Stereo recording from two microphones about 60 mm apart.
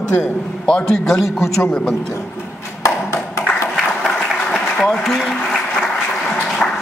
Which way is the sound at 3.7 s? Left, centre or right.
Centre.